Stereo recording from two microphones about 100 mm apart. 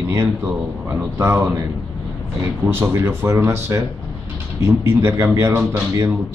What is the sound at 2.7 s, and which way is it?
A man's voice, 25° right (ahead or behind).